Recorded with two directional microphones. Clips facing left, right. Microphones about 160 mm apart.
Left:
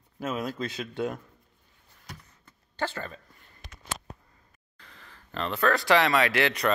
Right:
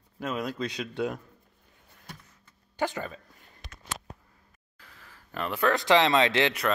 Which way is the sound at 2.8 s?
15° right (ahead or behind).